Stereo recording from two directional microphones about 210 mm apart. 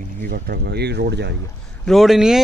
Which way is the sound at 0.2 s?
45° right (ahead or behind).